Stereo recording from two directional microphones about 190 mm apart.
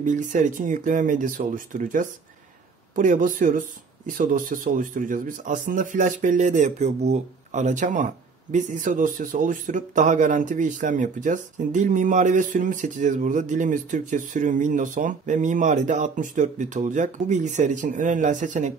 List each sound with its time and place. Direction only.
0.0 s speech: 45° right (ahead or behind)